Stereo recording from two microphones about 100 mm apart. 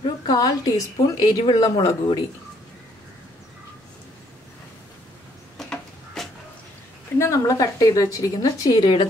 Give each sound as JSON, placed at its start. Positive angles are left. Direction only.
{"t": 0.0, "sound": "a woman's voice", "side_deg": 40}
{"t": 5.6, "sound": "a sound", "side_deg": 0}
{"t": 7.2, "sound": "a woman's voice", "side_deg": 30}